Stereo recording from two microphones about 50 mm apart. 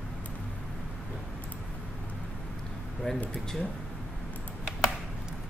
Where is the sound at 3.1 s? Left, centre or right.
Centre.